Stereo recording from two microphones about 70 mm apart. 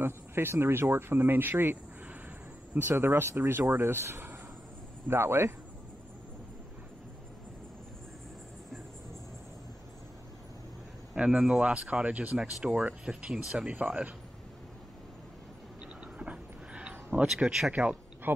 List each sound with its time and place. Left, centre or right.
0.0 s speech: right
2.9 s speech: right
11.1 s speech: centre
12.4 s speech: centre
13.7 s speech: right
16.2 s a sound: centre
17.5 s speech: centre
17.7 s a sound: right